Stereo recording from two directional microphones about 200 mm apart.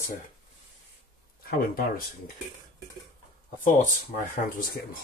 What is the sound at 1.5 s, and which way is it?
Speech, 45° left (ahead or behind).